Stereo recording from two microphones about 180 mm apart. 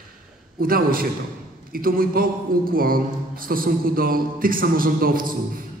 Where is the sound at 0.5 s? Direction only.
55° right (ahead or behind).